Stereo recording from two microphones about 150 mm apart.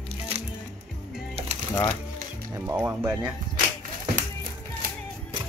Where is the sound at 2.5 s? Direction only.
15° right (ahead or behind).